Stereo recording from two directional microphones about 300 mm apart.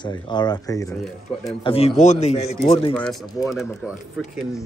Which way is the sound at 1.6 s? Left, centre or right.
Centre.